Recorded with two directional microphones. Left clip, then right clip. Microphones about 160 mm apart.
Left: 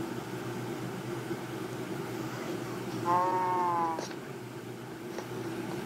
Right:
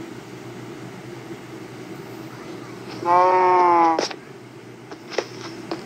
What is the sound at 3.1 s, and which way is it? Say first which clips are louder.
Sheep: right 13 dB; 50° right (ahead or behind).